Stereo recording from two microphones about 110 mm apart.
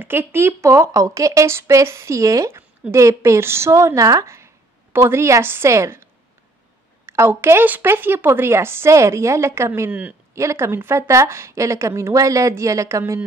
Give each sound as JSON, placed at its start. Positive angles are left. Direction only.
{"t": 0.0, "sound": "a woman's voice", "side_deg": -20}
{"t": 7.1, "sound": "a woman's voice", "side_deg": -25}